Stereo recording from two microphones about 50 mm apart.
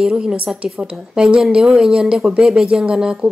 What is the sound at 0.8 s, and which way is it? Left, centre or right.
Speech, right.